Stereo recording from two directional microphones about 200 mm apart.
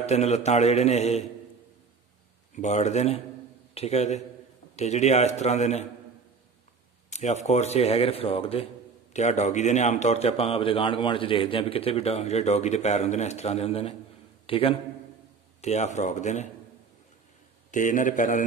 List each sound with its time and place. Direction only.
0.0 s a man's voice: 35° left (ahead or behind)
2.5 s a man's voice: 35° left (ahead or behind)
7.1 s a sound: 35° left (ahead or behind)
7.4 s a man's voice: 35° left (ahead or behind)
17.6 s a man's voice: 40° left (ahead or behind)